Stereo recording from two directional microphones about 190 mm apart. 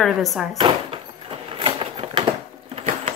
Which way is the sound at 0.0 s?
Centre (ahead or behind).